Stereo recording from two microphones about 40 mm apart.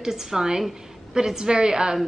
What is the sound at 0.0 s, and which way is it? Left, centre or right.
A woman's voice, centre.